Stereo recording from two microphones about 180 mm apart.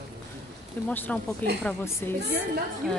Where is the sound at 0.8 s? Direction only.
10° left (ahead or behind).